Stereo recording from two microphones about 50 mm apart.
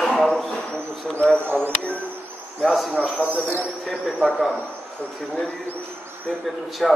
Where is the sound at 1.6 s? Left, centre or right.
Right.